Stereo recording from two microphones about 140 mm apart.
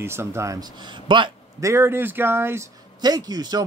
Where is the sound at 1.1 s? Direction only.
35° right (ahead or behind).